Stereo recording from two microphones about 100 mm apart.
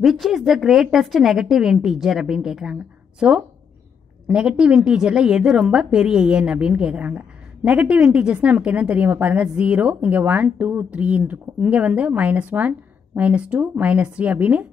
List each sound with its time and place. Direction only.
0.0 s a woman's voice: centre (ahead or behind)